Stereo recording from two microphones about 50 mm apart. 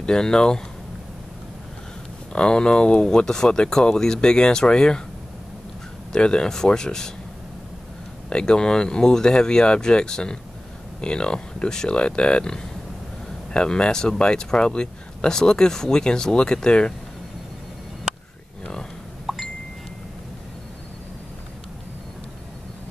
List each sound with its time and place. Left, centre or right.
0.0 s speech: centre
2.3 s speech: centre
6.1 s speech: centre
8.3 s speech: centre
19.2 s a sound: centre